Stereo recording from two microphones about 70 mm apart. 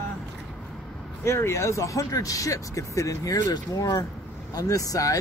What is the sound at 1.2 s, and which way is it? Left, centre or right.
Speech, left.